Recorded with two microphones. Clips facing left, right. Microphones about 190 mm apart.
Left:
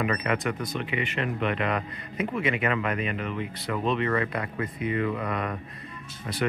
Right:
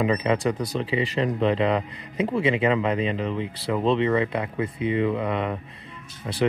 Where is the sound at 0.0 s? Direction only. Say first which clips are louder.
Right 5 dB; 25° right (ahead or behind).